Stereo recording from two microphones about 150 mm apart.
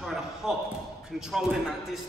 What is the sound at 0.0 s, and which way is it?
Basketball bounce, centre (ahead or behind).